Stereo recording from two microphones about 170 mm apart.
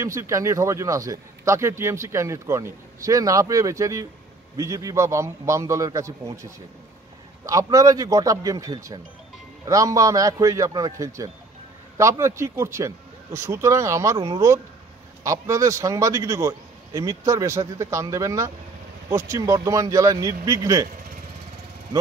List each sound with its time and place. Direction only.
0.0 s a man's voice: 15° right (ahead or behind)